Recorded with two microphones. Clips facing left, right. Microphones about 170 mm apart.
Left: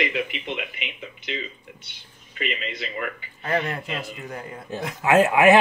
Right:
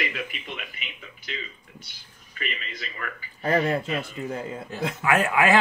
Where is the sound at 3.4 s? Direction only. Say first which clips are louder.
Right 3 dB; 35° right (ahead or behind).